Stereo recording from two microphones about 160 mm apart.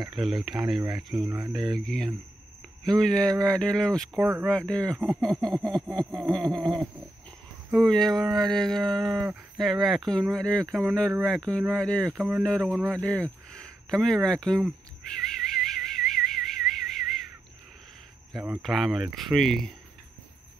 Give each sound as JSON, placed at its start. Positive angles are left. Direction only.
{"t": 0.1, "sound": "speech", "side_deg": 0}
{"t": 12.2, "sound": "speech", "side_deg": -10}
{"t": 13.0, "sound": "speech", "side_deg": 5}
{"t": 15.4, "sound": "a sound", "side_deg": 0}
{"t": 18.4, "sound": "speech", "side_deg": 0}